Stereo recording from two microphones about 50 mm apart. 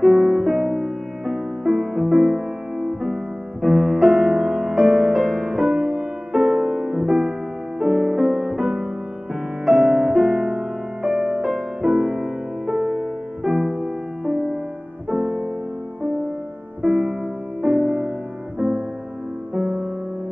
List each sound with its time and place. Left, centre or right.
0.0 s music: centre
15.0 s keyboard: centre
16.8 s music: centre